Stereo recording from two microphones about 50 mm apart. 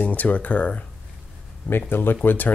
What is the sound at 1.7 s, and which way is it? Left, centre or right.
Speech, left.